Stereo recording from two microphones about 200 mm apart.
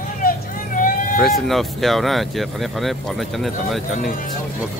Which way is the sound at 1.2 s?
Centre (ahead or behind).